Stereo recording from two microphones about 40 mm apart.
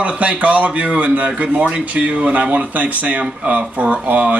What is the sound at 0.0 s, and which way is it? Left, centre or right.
Speech, right.